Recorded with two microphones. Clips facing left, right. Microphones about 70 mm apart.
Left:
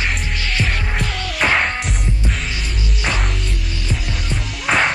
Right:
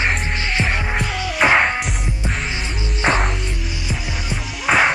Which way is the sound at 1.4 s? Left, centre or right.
Centre.